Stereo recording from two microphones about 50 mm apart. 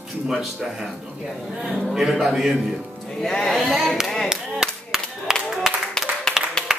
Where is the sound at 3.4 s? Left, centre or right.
Centre.